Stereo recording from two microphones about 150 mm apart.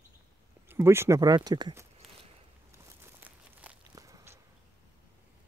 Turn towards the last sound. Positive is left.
turn(degrees=-20)  # may be behind; listen again after turning